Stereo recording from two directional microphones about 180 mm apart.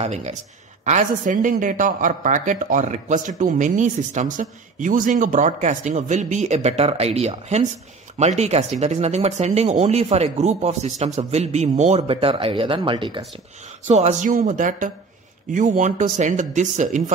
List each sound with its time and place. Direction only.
0.0 s speech: 40° right (ahead or behind)
13.8 s speech: 40° right (ahead or behind)